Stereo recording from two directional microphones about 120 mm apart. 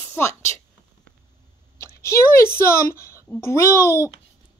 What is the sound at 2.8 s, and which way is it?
A woman's voice, 20° left (ahead or behind).